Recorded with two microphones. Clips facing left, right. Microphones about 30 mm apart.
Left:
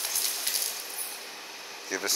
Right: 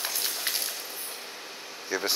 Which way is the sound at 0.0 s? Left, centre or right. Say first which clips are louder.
Right 2 dB; centre.